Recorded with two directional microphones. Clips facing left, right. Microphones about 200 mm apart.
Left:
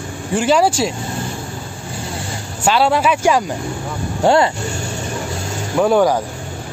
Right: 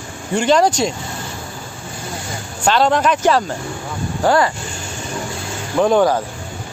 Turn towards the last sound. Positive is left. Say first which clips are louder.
# even
turn(degrees=10)  # may be behind; listen again after turning